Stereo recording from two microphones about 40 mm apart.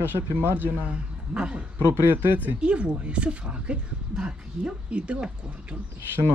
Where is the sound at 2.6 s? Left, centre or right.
Right.